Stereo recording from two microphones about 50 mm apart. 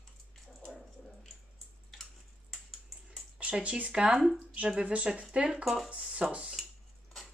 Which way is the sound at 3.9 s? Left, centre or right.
Centre.